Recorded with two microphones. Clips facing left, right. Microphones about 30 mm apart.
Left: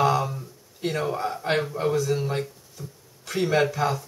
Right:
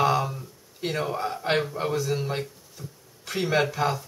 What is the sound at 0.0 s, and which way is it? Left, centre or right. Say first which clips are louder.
Speech: left 1 dB; centre.